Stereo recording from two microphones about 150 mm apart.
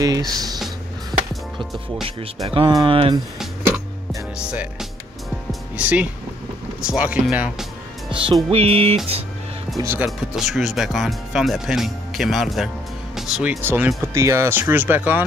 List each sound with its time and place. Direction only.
0.0 s speech: 25° right (ahead or behind)
1.3 s music: centre (ahead or behind)
2.4 s music: 35° right (ahead or behind)
4.4 s speech: 5° right (ahead or behind)
8.1 s music: 35° right (ahead or behind)
9.9 s speech: centre (ahead or behind)